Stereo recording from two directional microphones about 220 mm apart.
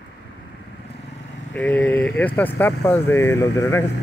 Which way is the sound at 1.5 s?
5° left (ahead or behind).